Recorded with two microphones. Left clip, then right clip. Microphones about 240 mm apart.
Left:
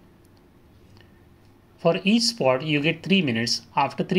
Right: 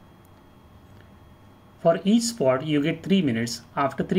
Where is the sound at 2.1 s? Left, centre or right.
Centre.